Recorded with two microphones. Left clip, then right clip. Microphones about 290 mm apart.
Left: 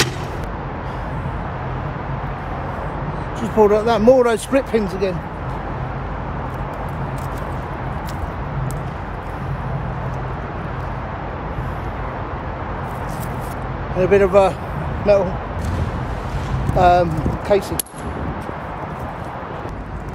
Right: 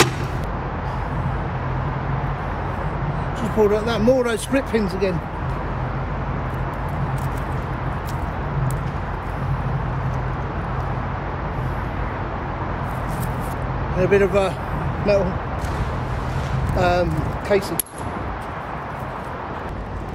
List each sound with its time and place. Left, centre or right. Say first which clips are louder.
3.6 s speech: left 5 dB; centre
13.9 s speech: left 4 dB; centre
16.7 s speech: left 6 dB; centre